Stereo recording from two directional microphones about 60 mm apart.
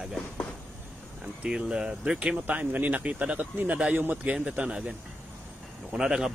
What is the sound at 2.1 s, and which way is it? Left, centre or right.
Speech, right.